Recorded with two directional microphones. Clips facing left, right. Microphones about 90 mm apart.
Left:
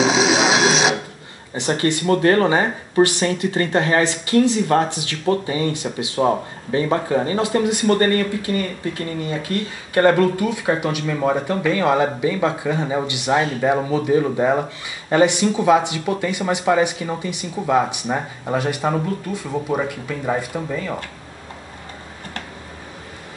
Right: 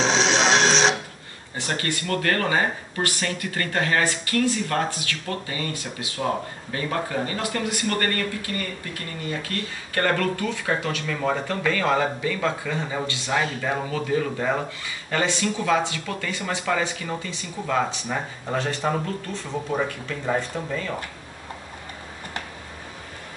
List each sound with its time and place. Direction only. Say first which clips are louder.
0.0 s music: left 4 dB; 5° left (ahead or behind)
1.5 s speech: left 8 dB; 25° left (ahead or behind)